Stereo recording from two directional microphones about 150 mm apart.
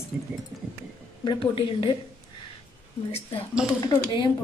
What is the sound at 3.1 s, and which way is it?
A woman's voice, 40° left (ahead or behind).